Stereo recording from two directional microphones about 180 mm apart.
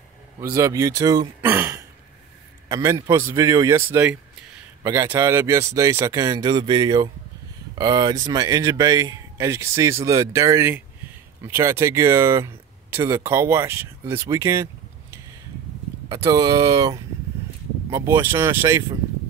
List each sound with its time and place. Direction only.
0.6 s speech: 15° right (ahead or behind)
16.1 s speech: 20° right (ahead or behind)